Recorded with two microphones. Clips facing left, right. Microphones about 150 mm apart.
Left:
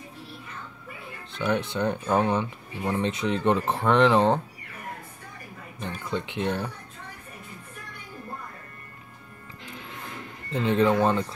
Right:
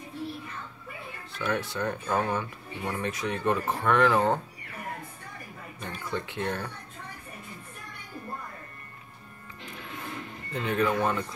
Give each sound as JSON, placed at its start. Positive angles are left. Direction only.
{"t": 1.4, "sound": "speech", "side_deg": 20}
{"t": 6.0, "sound": "speech", "side_deg": 20}
{"t": 10.5, "sound": "speech", "side_deg": 30}